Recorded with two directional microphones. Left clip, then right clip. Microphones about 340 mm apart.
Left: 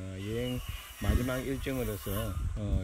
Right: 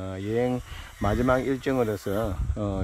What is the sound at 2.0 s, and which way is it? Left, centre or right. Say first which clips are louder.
Speech: right 10 dB; right.